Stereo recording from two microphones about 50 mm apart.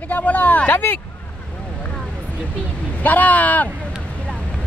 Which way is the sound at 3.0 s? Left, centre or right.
Left.